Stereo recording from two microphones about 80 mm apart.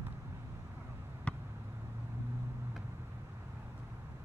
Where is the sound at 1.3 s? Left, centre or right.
Centre.